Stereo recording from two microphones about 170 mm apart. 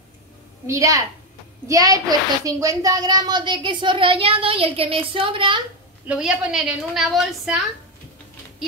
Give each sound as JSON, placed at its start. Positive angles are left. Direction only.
{"t": 0.7, "sound": "a woman's voice", "side_deg": -20}
{"t": 6.0, "sound": "a woman's voice", "side_deg": -5}